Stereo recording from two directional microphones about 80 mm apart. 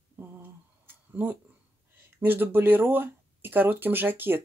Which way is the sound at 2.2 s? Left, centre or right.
Right.